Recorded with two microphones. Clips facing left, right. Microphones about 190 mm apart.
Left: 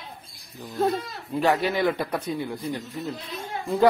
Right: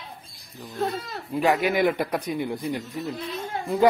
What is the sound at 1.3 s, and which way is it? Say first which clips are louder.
Speech: right 1 dB; 10° right (ahead or behind).